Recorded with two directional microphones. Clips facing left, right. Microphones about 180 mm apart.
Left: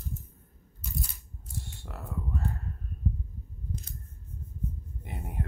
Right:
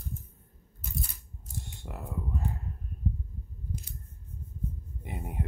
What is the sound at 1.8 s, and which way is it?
Speech, 15° right (ahead or behind).